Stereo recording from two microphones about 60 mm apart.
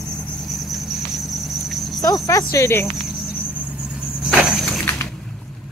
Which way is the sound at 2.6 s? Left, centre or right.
Left.